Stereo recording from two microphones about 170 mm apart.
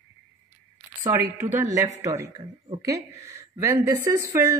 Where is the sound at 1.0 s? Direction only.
15° right (ahead or behind).